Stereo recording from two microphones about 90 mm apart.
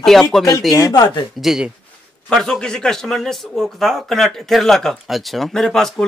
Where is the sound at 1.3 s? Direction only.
5° right (ahead or behind).